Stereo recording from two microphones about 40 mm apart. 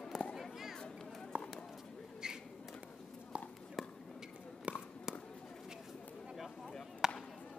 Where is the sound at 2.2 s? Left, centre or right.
Centre.